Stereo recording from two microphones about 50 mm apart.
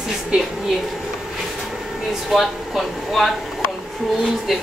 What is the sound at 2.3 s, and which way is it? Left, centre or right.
A woman's voice, centre.